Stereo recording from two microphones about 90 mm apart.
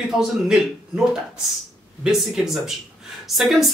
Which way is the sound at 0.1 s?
5° right (ahead or behind).